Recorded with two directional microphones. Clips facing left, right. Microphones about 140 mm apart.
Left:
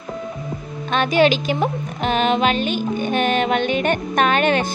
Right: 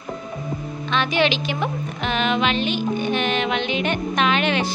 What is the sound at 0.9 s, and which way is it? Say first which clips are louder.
Speech: left 5 dB; 45° left (ahead or behind).